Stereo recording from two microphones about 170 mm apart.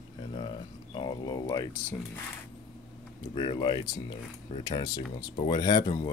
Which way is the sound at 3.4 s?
30° left (ahead or behind).